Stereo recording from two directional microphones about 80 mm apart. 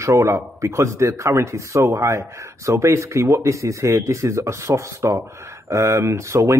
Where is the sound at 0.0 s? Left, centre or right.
Right.